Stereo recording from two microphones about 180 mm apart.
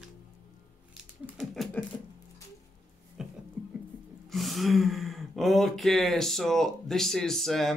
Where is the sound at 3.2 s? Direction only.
5° right (ahead or behind).